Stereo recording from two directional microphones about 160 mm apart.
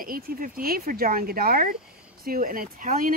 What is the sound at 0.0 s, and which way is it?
Speech, 60° right (ahead or behind).